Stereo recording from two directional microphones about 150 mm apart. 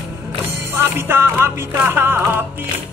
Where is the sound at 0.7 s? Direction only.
15° right (ahead or behind).